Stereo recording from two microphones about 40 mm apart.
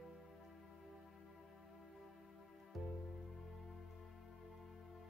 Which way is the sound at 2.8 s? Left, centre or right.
Centre.